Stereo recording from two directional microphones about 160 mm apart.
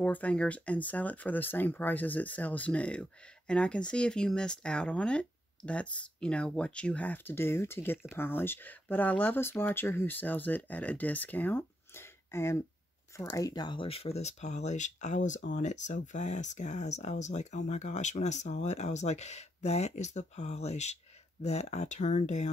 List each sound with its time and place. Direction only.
0.0 s speech: 10° left (ahead or behind); by 22.5 s 45° left (ahead or behind)